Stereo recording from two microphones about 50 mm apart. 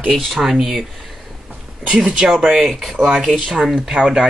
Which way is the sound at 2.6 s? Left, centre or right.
Centre.